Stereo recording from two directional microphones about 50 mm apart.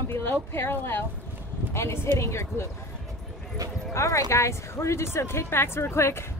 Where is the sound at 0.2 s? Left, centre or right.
Left.